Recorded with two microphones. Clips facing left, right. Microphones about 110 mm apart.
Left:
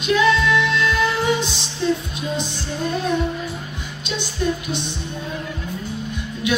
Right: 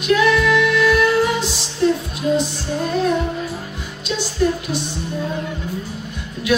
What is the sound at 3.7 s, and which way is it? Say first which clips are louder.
Speech: right 3 dB; 20° left (ahead or behind).